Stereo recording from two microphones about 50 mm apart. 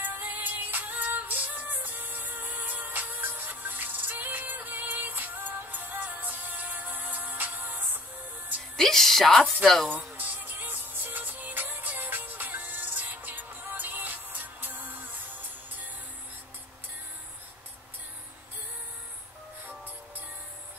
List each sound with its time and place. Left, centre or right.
0.0 s music: right
8.7 s a woman's voice: centre
10.1 s music: right